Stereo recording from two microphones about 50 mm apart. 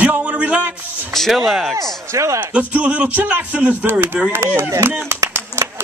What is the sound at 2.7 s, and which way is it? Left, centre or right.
Speech, right.